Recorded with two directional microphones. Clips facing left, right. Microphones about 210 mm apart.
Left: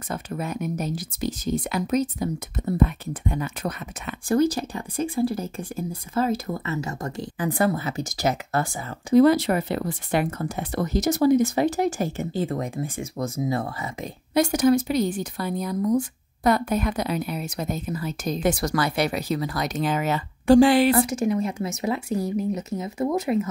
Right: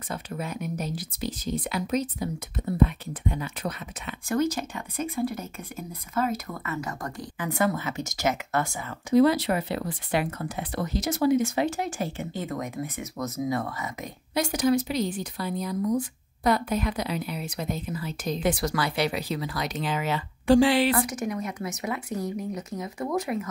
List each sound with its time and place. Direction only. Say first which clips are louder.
0.1 s a woman's voice: left 3 dB; 45° left (ahead or behind)
4.3 s speech: left 5 dB; 35° left (ahead or behind)
9.1 s speech: left 4 dB; 50° left (ahead or behind); by 14.1 s 30° left (ahead or behind)
14.3 s a woman's voice: left 5 dB; 50° left (ahead or behind)
20.9 s speech: left 6 dB; 25° left (ahead or behind)